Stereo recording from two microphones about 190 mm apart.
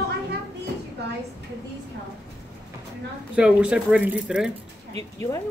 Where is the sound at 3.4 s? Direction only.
5° right (ahead or behind).